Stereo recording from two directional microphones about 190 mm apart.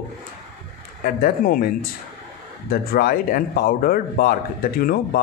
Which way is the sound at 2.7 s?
50° left (ahead or behind).